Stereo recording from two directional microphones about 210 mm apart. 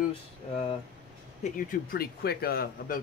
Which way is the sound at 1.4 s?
40° left (ahead or behind).